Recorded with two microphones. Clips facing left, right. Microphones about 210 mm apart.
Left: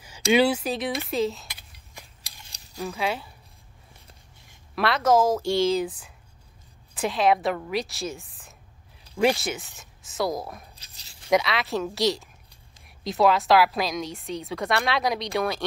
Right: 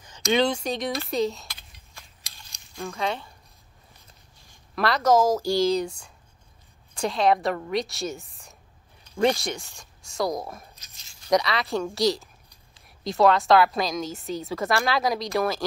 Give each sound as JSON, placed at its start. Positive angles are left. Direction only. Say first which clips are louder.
{"t": 0.3, "sound": "a woman's voice", "louder": "left 2 dB", "side_deg": 10}
{"t": 1.5, "sound": "a sound", "louder": "left 1 dB", "side_deg": 15}
{"t": 2.5, "sound": "cutlery", "louder": "left 2 dB", "side_deg": 35}
{"t": 2.8, "sound": "speech", "louder": "left 1 dB", "side_deg": 5}
{"t": 4.7, "sound": "a woman's voice", "louder": "even", "side_deg": 0}
{"t": 10.8, "sound": "a sound", "louder": "left 1 dB", "side_deg": 30}
{"t": 11.2, "sound": "a woman's voice", "louder": "even", "side_deg": 0}